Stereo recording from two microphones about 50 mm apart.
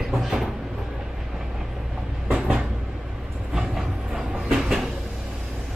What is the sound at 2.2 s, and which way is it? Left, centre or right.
Train, centre.